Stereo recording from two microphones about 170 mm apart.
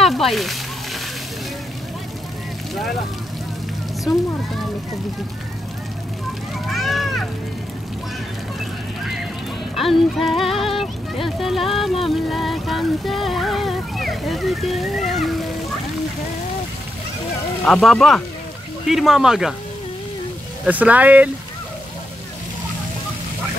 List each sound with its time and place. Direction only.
0.0 s speech: centre (ahead or behind)
6.7 s a sound: centre (ahead or behind)
9.8 s speech: centre (ahead or behind)
17.6 s speech: centre (ahead or behind)
20.6 s speech: 10° right (ahead or behind)